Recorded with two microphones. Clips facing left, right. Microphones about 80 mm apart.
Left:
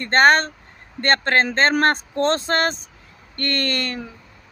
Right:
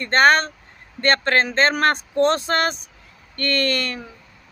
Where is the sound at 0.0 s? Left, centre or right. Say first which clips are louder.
Left 1 dB; left.